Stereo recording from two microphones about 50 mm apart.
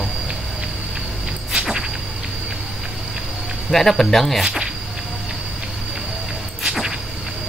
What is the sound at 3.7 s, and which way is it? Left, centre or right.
Speech, centre.